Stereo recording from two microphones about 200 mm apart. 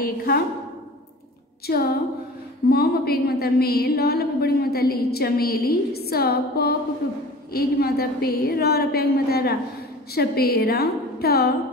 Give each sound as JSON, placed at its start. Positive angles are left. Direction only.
{"t": 0.0, "sound": "a woman's voice", "side_deg": 50}
{"t": 1.7, "sound": "a woman's voice", "side_deg": 50}